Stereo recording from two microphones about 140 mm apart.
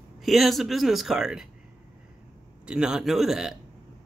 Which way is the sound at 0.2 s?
Centre (ahead or behind).